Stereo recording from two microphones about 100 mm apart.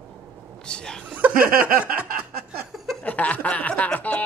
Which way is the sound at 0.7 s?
10° left (ahead or behind).